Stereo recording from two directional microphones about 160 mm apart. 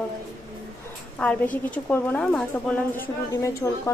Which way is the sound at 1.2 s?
5° left (ahead or behind).